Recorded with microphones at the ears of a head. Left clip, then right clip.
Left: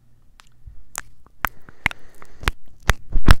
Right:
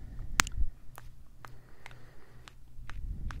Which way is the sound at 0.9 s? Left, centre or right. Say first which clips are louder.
Left 19 dB; left.